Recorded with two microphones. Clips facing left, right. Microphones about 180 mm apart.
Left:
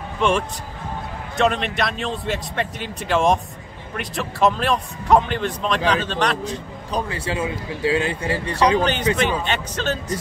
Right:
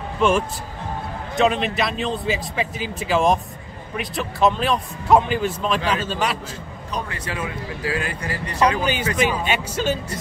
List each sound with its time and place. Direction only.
0.2 s a man's voice: centre (ahead or behind)
6.9 s speech: 30° left (ahead or behind)
8.8 s speech: 10° right (ahead or behind)